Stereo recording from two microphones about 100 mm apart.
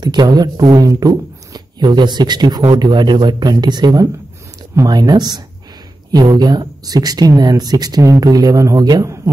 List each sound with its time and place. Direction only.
0.0 s a man's voice: 45° right (ahead or behind)
9.0 s speech: 30° right (ahead or behind)